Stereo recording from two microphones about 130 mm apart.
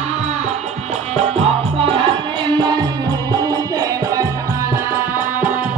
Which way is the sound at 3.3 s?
30° right (ahead or behind).